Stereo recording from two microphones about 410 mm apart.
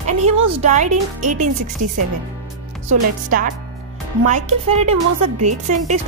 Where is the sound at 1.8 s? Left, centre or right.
Right.